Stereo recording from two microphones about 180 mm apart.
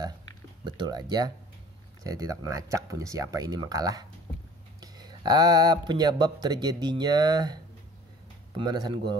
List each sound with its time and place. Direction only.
0.7 s speech: 25° right (ahead or behind)
8.5 s speech: 25° right (ahead or behind)